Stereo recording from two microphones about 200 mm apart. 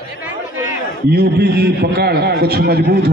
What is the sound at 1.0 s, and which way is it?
A man's voice, 50° right (ahead or behind).